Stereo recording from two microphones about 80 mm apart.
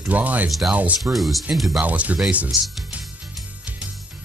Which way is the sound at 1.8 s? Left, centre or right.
Centre.